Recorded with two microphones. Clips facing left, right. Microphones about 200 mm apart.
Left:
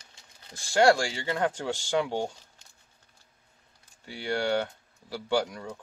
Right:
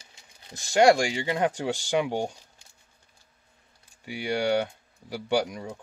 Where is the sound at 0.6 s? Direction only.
20° right (ahead or behind).